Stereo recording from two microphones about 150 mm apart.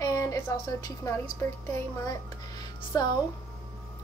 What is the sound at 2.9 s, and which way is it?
Child singing, 25° left (ahead or behind).